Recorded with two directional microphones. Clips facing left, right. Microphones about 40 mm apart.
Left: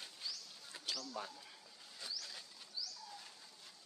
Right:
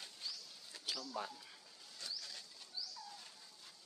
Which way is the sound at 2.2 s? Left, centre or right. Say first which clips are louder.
Left 1 dB; centre.